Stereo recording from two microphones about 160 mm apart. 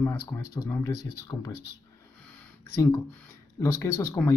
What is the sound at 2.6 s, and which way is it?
Speech, 20° left (ahead or behind).